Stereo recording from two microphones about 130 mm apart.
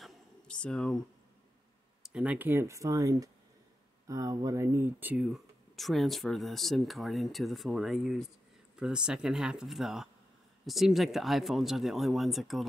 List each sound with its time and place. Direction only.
0.0 s a sound: 5° left (ahead or behind)
2.0 s speech: 10° right (ahead or behind)
5.1 s speech: 5° right (ahead or behind)